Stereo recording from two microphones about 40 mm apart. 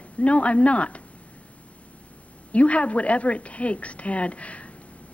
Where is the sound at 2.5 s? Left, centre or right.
Left.